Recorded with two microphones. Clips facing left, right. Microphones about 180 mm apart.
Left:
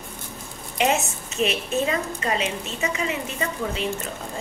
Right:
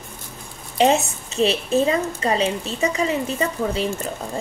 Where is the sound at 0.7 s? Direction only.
30° right (ahead or behind).